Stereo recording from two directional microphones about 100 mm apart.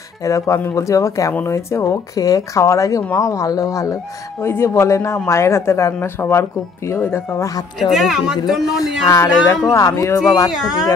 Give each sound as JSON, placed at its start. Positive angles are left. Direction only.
{"t": 0.2, "sound": "a man's voice", "side_deg": 35}
{"t": 7.9, "sound": "speech", "side_deg": 0}
{"t": 9.0, "sound": "speech", "side_deg": 30}
{"t": 10.5, "sound": "speech", "side_deg": -5}